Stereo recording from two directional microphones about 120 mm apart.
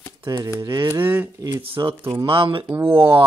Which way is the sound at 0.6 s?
25° right (ahead or behind).